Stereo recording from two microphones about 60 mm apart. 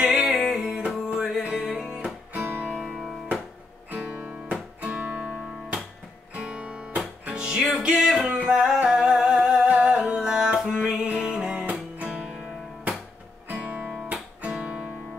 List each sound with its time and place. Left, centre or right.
0.2 s music: centre
2.3 s music: right
2.8 s music: centre
6.3 s music: centre
8.2 s music: right
13.5 s music: right
14.4 s guitar: right